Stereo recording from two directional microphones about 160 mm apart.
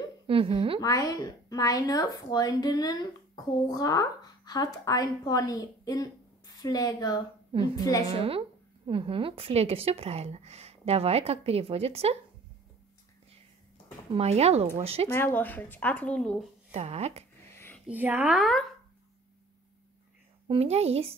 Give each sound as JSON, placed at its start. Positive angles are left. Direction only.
{"t": 0.3, "sound": "a woman's voice", "side_deg": -35}
{"t": 0.7, "sound": "a woman's voice", "side_deg": 25}
{"t": 8.2, "sound": "a woman's voice", "side_deg": -35}
{"t": 14.1, "sound": "a woman's voice", "side_deg": -40}
{"t": 15.0, "sound": "a woman's voice", "side_deg": 15}
{"t": 16.7, "sound": "speech", "side_deg": -40}
{"t": 17.6, "sound": "a sound", "side_deg": 10}
{"t": 17.8, "sound": "speech", "side_deg": -10}
{"t": 20.4, "sound": "a woman's voice", "side_deg": -40}